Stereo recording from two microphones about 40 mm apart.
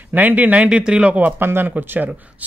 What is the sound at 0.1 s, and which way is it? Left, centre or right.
Speech, right.